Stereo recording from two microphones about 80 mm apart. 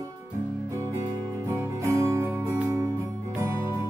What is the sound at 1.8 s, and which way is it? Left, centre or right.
Music, right.